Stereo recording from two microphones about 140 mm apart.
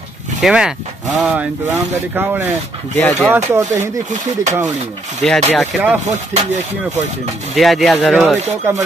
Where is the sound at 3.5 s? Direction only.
15° right (ahead or behind).